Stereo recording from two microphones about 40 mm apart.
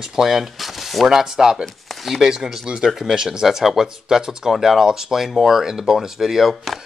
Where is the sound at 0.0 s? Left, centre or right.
Centre.